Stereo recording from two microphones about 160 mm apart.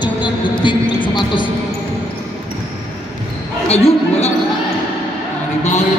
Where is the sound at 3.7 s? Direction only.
40° left (ahead or behind).